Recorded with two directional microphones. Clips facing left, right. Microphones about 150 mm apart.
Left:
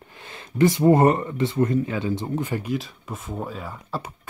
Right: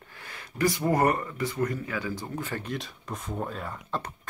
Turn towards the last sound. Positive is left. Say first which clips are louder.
# left 2 dB
turn(degrees=5)  # may be behind; listen again after turning